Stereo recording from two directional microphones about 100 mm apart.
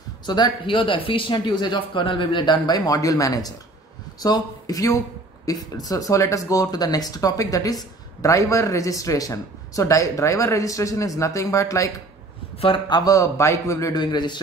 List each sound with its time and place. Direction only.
0.3 s speech: 50° left (ahead or behind); by 11.9 s 30° left (ahead or behind)
12.5 s speech: 55° left (ahead or behind); by 14.0 s 35° left (ahead or behind)
14.1 s speech: 50° left (ahead or behind)